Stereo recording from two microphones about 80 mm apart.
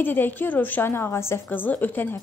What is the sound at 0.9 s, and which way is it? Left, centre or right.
A woman's voice, left.